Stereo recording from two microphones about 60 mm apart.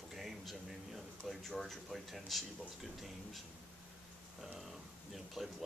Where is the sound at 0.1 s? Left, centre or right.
Centre.